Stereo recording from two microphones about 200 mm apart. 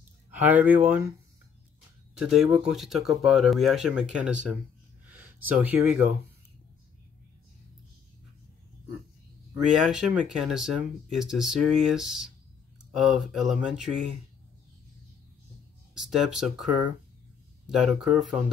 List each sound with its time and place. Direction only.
0.3 s speech: 10° right (ahead or behind)
2.1 s speech: 5° right (ahead or behind)
5.0 s a sound: 10° right (ahead or behind)
9.5 s speech: centre (ahead or behind)
15.9 s speech: centre (ahead or behind)